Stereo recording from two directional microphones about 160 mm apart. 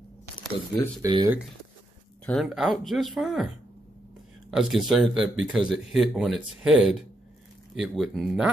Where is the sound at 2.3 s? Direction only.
Centre (ahead or behind).